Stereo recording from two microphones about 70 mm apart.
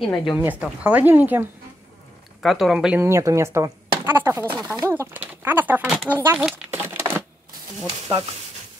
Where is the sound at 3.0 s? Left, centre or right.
Right.